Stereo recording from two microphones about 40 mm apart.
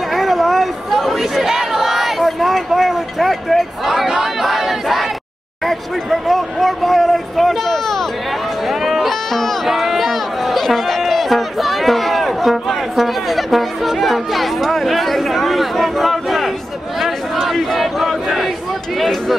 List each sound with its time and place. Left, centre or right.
0.1 s crowd: centre
4.2 s battle cry: centre
5.7 s a sound: centre
9.7 s run: centre
17.0 s crowd: centre
18.9 s a sound: centre